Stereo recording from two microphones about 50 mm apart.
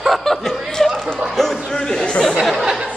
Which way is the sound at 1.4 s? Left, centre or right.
Centre.